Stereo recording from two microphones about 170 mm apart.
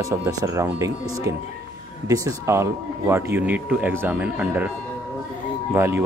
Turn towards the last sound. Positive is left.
turn(degrees=-15)  # may be behind; listen again after turning